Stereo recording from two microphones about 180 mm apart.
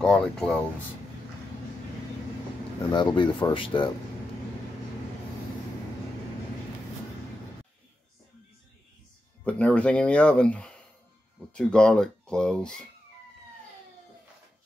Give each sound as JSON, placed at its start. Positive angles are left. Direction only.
{"t": 0.0, "sound": "speech", "side_deg": 5}
{"t": 2.9, "sound": "speech", "side_deg": 25}
{"t": 9.4, "sound": "speech", "side_deg": 5}